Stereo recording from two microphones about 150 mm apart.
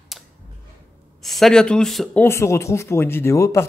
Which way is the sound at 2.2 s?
20° left (ahead or behind).